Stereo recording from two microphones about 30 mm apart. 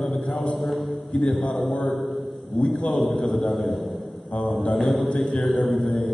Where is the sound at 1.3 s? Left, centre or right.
Centre.